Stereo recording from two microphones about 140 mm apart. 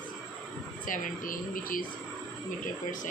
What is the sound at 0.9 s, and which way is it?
Speech, 75° left (ahead or behind).